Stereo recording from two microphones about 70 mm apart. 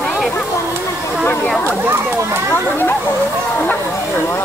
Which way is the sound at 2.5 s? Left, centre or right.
Left.